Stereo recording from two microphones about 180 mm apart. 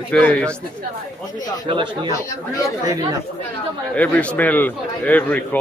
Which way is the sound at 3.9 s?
5° left (ahead or behind).